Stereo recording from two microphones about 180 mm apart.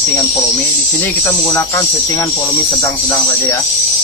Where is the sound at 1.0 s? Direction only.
20° left (ahead or behind).